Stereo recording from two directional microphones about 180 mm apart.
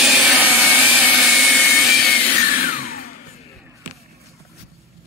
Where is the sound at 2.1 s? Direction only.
30° left (ahead or behind).